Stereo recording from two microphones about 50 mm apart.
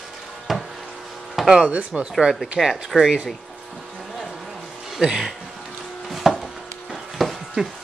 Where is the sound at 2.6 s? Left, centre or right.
Centre.